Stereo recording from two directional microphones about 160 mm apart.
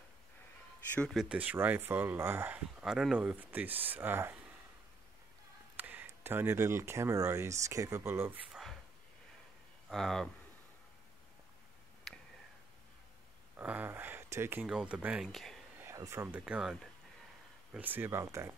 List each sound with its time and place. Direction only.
0.9 s speech: 5° left (ahead or behind)
1.3 s speech: 10° right (ahead or behind)
5.8 s speech: 10° right (ahead or behind)
9.8 s speech: centre (ahead or behind)
13.6 s speech: 10° right (ahead or behind)
15.8 s speech: 15° right (ahead or behind)